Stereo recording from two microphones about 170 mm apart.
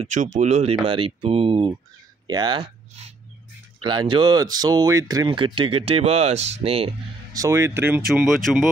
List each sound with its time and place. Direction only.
0.0 s speech: 45° right (ahead or behind)
7.3 s speech: 15° right (ahead or behind)
8.1 s speech: centre (ahead or behind)